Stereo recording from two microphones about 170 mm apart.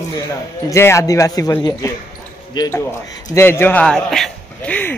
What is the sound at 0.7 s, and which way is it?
A man's voice, 15° left (ahead or behind).